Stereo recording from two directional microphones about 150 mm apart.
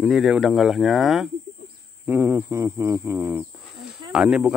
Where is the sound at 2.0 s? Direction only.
15° right (ahead or behind).